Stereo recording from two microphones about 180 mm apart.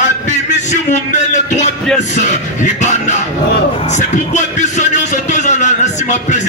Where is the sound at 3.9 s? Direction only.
40° left (ahead or behind).